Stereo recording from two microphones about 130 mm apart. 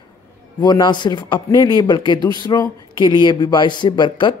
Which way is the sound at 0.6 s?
35° left (ahead or behind).